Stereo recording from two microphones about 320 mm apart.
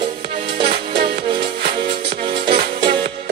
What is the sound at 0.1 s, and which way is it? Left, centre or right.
Music, centre.